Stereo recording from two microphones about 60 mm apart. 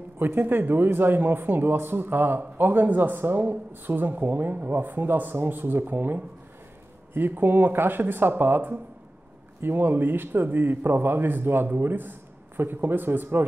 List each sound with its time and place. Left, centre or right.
0.2 s a man's voice: right